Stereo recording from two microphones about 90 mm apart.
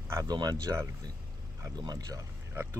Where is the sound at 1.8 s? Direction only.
45° right (ahead or behind).